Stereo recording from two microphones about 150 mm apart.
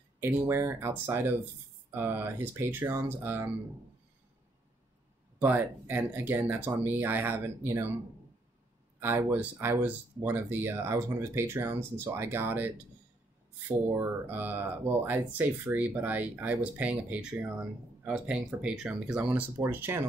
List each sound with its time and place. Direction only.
0.5 s speech: 15° right (ahead or behind)
5.4 s speech: 10° right (ahead or behind)
9.0 s speech: 15° right (ahead or behind)